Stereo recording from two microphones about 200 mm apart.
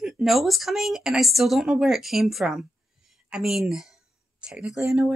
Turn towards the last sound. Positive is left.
turn(degrees=-5)  # may be behind; listen again after turning